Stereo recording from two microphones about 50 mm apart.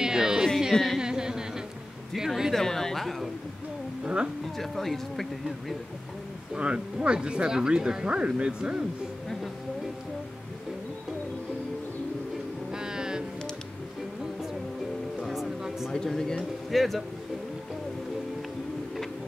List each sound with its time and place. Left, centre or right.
0.0 s a sound: centre
2.5 s speech: centre
4.0 s speech: right
4.6 s speech: centre
6.5 s speech: right
12.7 s music: centre
15.2 s a sound: centre
15.9 s a sound: centre
16.7 s speech: centre